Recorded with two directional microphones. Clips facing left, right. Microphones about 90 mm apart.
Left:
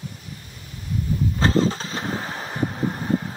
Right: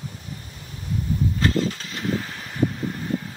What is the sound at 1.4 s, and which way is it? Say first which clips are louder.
Vehicle: left 5 dB; 35° left (ahead or behind).